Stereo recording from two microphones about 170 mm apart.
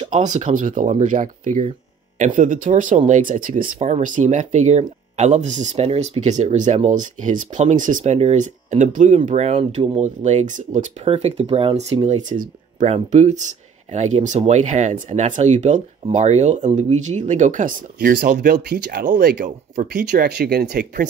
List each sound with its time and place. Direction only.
0.1 s speech: 45° right (ahead or behind)